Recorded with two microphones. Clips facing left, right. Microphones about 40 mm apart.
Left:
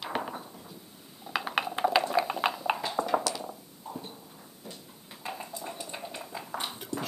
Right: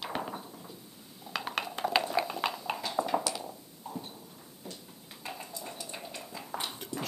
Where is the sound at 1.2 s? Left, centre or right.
Centre.